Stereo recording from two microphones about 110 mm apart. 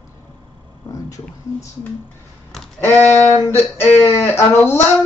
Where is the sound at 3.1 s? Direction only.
90° left.